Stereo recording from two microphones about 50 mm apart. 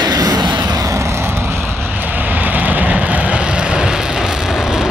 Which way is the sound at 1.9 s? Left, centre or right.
Right.